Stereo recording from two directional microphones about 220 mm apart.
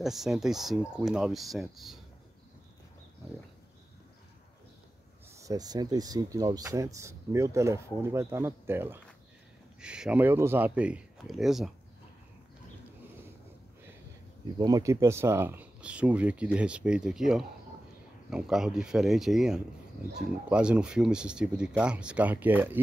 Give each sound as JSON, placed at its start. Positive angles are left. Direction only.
{"t": 0.0, "sound": "speech", "side_deg": 0}
{"t": 5.3, "sound": "speech", "side_deg": -15}
{"t": 14.6, "sound": "speech", "side_deg": -15}